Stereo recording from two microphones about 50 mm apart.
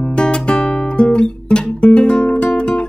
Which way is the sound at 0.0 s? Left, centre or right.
Centre.